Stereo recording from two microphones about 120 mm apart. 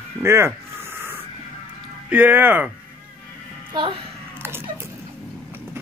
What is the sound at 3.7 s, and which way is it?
Speech, 45° right (ahead or behind).